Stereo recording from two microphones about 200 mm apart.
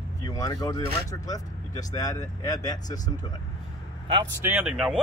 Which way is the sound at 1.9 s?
20° left (ahead or behind).